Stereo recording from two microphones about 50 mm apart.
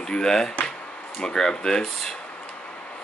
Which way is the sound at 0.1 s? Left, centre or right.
Centre.